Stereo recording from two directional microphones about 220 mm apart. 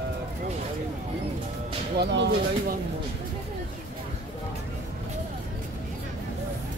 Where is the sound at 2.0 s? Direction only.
50° right (ahead or behind).